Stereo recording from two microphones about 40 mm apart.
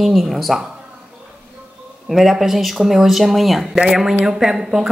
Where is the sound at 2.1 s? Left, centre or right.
Centre.